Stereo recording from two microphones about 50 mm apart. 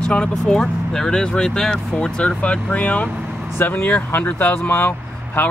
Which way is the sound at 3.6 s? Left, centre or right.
Left.